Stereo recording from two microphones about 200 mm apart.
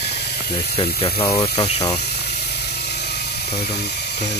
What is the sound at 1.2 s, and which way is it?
Speech, 20° left (ahead or behind).